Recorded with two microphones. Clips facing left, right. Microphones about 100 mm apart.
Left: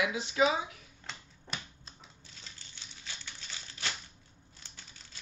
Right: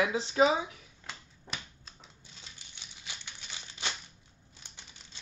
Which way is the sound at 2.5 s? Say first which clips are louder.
Even; 15° right (ahead or behind).